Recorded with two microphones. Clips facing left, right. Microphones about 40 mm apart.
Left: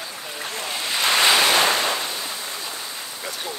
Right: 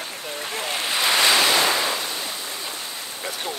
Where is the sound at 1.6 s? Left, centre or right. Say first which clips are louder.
Left 1 dB; left.